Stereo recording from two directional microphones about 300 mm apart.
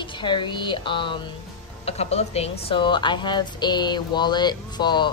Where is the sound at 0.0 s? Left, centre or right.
Centre.